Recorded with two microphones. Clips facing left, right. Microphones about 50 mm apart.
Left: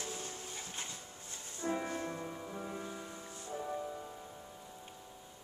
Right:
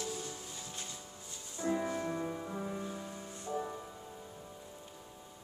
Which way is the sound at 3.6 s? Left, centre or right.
Centre.